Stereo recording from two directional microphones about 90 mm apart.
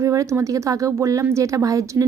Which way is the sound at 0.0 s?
35° right (ahead or behind).